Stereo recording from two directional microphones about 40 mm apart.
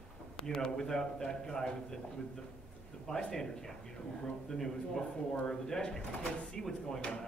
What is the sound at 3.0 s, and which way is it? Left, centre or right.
Speech, centre.